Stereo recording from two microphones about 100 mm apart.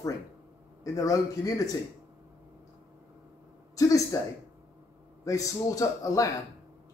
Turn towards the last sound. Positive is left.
turn(degrees=35)  # may be behind; listen again after turning